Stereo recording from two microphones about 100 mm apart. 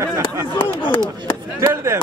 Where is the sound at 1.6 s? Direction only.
25° right (ahead or behind).